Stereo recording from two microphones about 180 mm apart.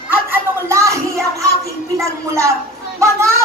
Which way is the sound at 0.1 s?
15° right (ahead or behind).